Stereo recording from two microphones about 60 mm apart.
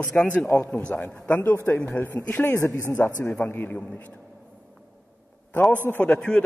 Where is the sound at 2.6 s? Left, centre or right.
Left.